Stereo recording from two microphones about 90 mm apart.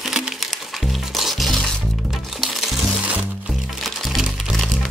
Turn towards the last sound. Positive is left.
turn(degrees=0)  # may be behind; listen again after turning